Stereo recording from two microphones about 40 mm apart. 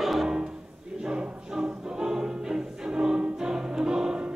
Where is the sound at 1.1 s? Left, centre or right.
Centre.